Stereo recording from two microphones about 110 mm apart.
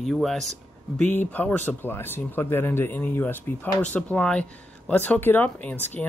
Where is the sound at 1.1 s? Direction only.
15° left (ahead or behind).